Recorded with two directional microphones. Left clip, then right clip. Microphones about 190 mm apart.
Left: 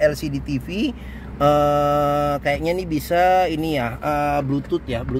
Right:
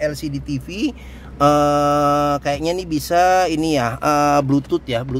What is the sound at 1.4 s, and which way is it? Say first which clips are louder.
Speech: right 2 dB; 30° right (ahead or behind).